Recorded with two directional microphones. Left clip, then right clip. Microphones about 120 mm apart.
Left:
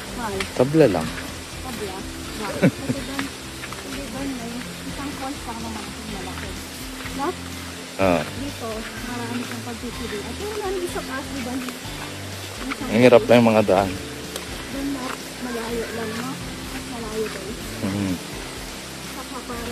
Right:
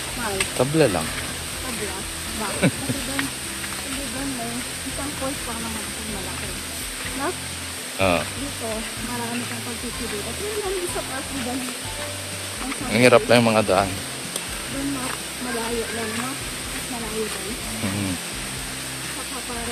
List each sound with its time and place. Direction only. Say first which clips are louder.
0.6 s speech: left 3 dB; 55° left (ahead or behind)
2.6 s speech: left 2 dB; 80° left
8.0 s speech: left 1 dB; 65° left (ahead or behind)
12.9 s speech: left 2 dB; 50° left (ahead or behind)